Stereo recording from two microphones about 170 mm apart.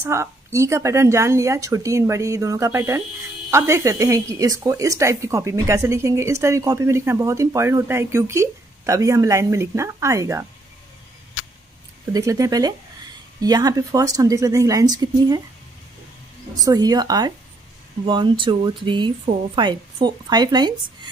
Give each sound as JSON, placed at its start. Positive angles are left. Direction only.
{"t": 0.0, "sound": "speech", "side_deg": -15}
{"t": 12.1, "sound": "speech", "side_deg": -20}
{"t": 16.5, "sound": "speech", "side_deg": -20}